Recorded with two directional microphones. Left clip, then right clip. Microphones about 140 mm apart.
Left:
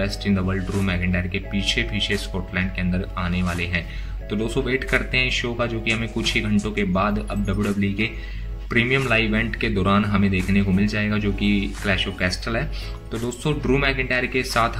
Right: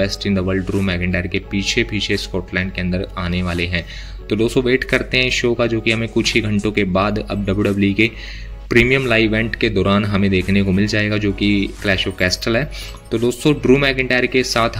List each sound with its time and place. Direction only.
0.0 s speech: 50° right (ahead or behind); by 9.0 s 70° right (ahead or behind)
9.0 s speech: 55° right (ahead or behind)